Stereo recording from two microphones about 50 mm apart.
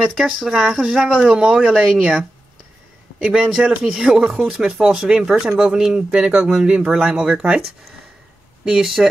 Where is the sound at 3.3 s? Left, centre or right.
Centre.